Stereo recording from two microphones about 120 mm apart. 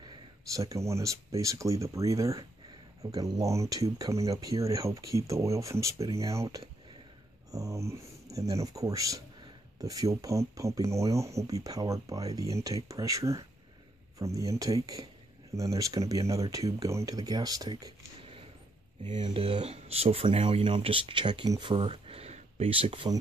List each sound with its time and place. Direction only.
0.6 s speech: 25° right (ahead or behind)
7.5 s speech: 25° right (ahead or behind)
19.2 s speech: 55° right (ahead or behind)